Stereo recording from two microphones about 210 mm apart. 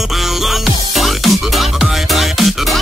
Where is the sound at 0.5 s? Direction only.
Centre (ahead or behind).